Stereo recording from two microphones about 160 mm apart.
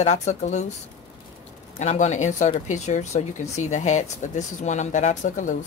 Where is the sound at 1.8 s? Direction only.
45° left (ahead or behind).